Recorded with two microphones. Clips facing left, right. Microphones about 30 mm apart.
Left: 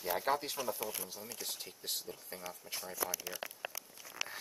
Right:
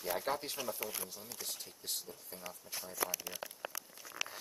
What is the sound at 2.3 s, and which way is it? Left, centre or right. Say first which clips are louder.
Speech: left 2 dB; left.